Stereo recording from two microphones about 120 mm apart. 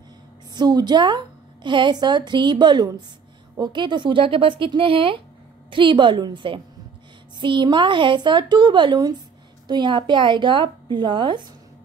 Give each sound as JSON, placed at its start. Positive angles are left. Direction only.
{"t": 0.5, "sound": "a woman's voice", "side_deg": -35}